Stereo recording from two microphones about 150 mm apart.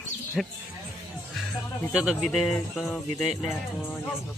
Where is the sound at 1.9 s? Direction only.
5° right (ahead or behind).